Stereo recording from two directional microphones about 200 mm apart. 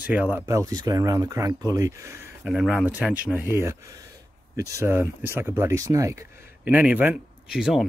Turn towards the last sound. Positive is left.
turn(degrees=-5)  # may be behind; listen again after turning